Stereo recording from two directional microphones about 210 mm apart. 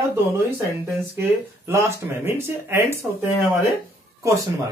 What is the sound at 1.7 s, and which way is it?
Speech, 10° right (ahead or behind).